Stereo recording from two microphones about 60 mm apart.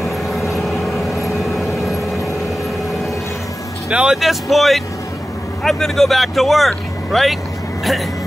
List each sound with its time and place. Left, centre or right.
0.7 s vehicle: centre
3.9 s speech: centre
4.2 s speech: centre